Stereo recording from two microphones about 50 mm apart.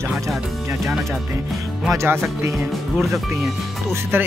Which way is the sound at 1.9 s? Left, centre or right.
Right.